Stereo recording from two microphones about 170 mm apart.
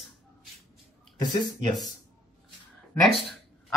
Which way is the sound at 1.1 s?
25° left (ahead or behind).